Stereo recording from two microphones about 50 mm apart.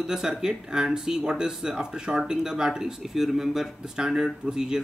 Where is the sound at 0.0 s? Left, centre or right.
Centre.